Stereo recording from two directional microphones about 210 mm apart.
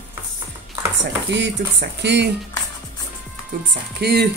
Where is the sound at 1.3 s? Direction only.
55° right (ahead or behind).